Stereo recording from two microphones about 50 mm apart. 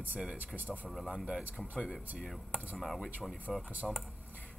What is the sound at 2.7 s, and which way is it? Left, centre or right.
Speech, centre.